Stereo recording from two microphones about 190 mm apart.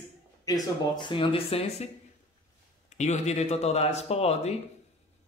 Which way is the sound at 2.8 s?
35° left (ahead or behind).